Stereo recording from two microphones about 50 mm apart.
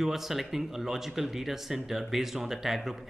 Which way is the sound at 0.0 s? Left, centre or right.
Centre.